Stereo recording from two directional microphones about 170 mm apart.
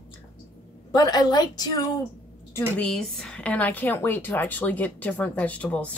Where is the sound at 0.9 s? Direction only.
25° left (ahead or behind).